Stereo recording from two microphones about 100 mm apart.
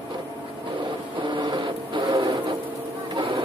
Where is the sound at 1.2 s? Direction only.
55° right (ahead or behind).